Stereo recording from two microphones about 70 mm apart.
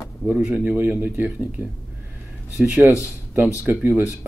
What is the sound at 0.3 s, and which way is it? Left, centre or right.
A man's voice, centre.